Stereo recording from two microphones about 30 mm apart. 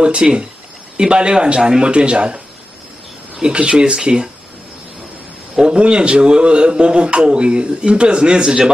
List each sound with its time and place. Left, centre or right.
0.0 s speech: right
3.4 s speech: right
5.6 s speech: right